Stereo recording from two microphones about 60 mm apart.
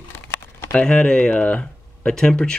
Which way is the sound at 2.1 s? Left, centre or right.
Centre.